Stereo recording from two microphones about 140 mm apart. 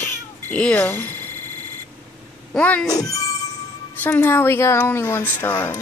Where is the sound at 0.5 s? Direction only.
10° left (ahead or behind).